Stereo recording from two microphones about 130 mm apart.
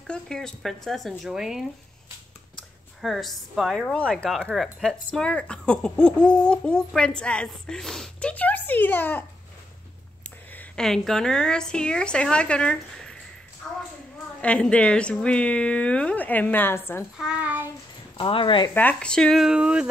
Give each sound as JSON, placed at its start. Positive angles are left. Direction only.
{"t": 0.0, "sound": "speech", "side_deg": 5}
{"t": 10.5, "sound": "speech", "side_deg": 10}
{"t": 13.6, "sound": "a sound", "side_deg": 5}
{"t": 14.4, "sound": "speech", "side_deg": 10}
{"t": 17.2, "sound": "a child's voice", "side_deg": -10}
{"t": 18.1, "sound": "speech", "side_deg": 40}
{"t": 18.7, "sound": "speech", "side_deg": 15}